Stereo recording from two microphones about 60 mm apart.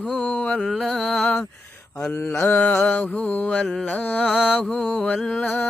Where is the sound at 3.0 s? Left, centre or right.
Left.